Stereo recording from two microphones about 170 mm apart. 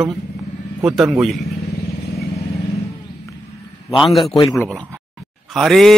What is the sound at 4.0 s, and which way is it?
Speech, centre (ahead or behind).